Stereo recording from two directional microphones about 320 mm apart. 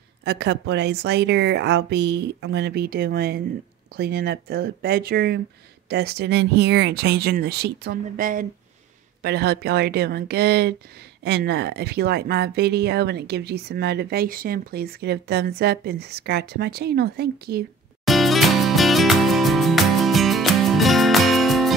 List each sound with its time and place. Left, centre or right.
0.2 s speech: right
18.0 s music: centre